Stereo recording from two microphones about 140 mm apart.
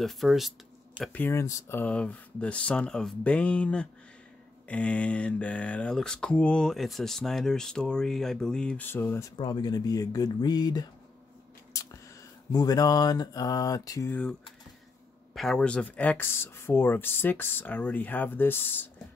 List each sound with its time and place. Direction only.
0.0 s speech: centre (ahead or behind)
1.1 s speech: 15° left (ahead or behind)
9.4 s mantra: 30° left (ahead or behind)
11.7 s a sound: 25° left (ahead or behind)
12.5 s mantra: 25° left (ahead or behind)
15.3 s speech: 5° left (ahead or behind)